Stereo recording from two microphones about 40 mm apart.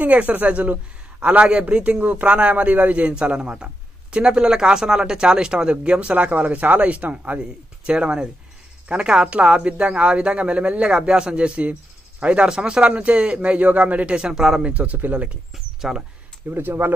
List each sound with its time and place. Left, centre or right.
0.0 s speech: right
1.2 s speech: right
2.9 s speech: right
6.1 s speech: right
11.1 s speech: centre
11.3 s speech: right
14.1 s speech: centre
14.6 s speech: right
15.0 s speech: right
15.5 s speech: centre
16.5 s speech: right